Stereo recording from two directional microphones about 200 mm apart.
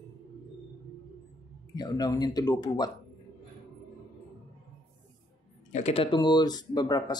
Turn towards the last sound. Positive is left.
turn(degrees=20)  # may be behind; listen again after turning